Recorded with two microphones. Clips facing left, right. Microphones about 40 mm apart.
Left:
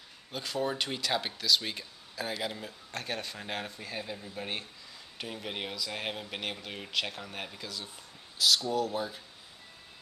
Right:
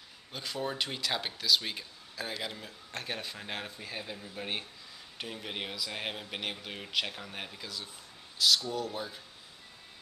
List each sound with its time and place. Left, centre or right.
0.3 s speech: centre